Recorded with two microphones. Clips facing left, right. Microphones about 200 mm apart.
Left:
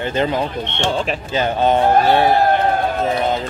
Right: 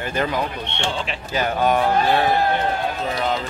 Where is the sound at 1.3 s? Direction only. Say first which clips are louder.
Left 3 dB; 25° left (ahead or behind).